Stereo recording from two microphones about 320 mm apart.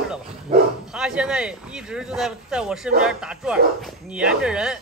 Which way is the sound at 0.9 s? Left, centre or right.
Centre.